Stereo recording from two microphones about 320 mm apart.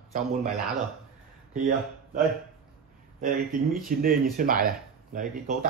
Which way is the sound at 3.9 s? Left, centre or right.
Right.